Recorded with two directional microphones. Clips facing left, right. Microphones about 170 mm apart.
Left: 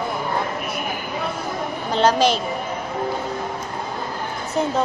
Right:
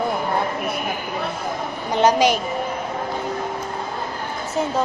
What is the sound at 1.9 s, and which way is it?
Speech, 15° right (ahead or behind).